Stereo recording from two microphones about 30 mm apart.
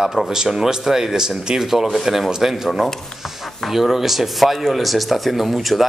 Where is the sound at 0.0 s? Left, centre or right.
Centre.